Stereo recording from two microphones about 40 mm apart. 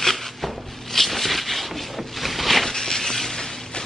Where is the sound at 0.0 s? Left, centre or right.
Centre.